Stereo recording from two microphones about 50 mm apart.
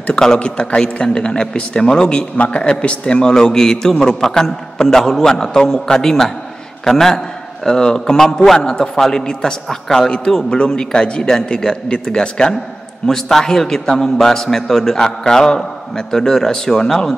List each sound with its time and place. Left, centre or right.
0.2 s a man's voice: centre